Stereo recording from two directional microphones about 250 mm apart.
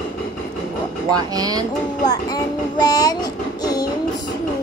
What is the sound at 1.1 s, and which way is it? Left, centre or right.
Speech, centre.